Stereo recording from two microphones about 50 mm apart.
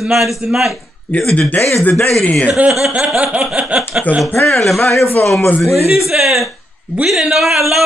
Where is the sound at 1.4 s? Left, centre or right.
Left.